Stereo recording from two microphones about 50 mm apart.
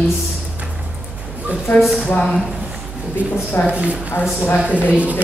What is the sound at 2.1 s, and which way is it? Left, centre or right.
Speech, centre.